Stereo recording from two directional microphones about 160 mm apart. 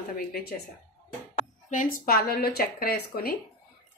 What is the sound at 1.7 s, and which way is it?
A woman's voice, 60° left (ahead or behind).